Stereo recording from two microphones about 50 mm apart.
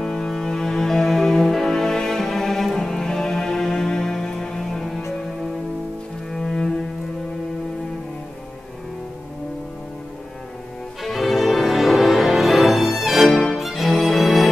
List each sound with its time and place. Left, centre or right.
0.0 s music: centre
6.4 s cello: centre
11.0 s music: centre